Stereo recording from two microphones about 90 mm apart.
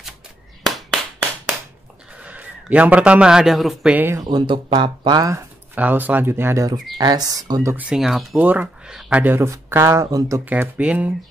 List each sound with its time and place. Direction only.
0.7 s clapping: centre (ahead or behind)
2.2 s a man's voice: 15° right (ahead or behind)
3.9 s speech: 25° right (ahead or behind)
4.2 s speech: 50° right (ahead or behind)
5.8 s speech: 20° right (ahead or behind)
7.0 s speech: 45° right (ahead or behind)
7.7 s speech: 15° right (ahead or behind)
8.0 s speech: centre (ahead or behind)
8.4 s speech: 15° right (ahead or behind)
9.2 s speech: 25° right (ahead or behind)
10.4 s speech: 20° right (ahead or behind)